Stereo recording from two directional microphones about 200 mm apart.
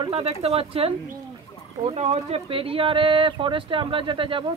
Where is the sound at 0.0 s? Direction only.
30° right (ahead or behind).